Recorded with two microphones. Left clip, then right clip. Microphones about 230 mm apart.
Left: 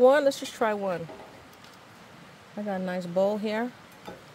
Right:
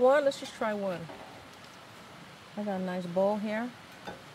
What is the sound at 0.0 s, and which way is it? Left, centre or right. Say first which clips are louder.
Speech: left 4 dB; left.